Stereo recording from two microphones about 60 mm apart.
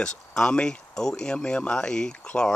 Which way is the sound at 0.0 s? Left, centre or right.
Centre.